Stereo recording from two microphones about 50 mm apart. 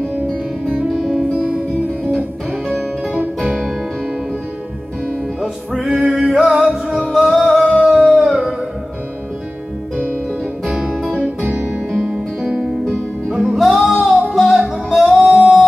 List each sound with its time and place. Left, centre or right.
5.4 s music: centre
7.6 s singing: right
7.9 s howl: centre
10.6 s music: centre
11.1 s music: right
11.9 s music: centre
15.1 s music: centre